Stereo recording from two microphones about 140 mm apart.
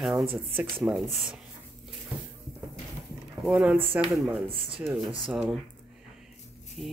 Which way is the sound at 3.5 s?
10° right (ahead or behind).